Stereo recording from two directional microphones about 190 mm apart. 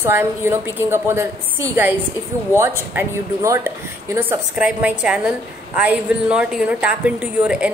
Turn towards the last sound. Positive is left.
turn(degrees=-5)  # may be behind; listen again after turning